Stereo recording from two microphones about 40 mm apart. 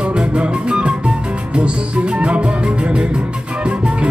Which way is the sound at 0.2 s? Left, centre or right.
Right.